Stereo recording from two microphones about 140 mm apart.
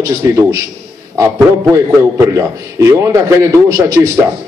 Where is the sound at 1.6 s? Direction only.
20° right (ahead or behind).